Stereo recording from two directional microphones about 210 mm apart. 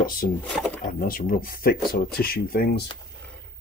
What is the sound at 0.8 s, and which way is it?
Speech, 45° left (ahead or behind).